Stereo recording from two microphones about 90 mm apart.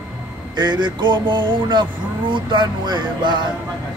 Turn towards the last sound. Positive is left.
turn(degrees=-60)  # may be behind; listen again after turning